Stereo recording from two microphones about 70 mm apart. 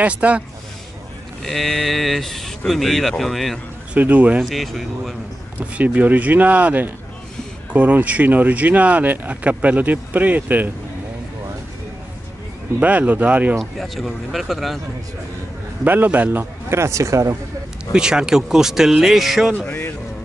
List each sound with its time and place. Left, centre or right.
0.0 s speech: centre
1.4 s speech: centre
3.9 s speech: centre
4.4 s speech: centre
5.6 s speech: right
12.8 s speech: right
13.6 s speech: centre
15.8 s speech: right
16.6 s speech: right
17.9 s speech: centre
19.5 s speech: left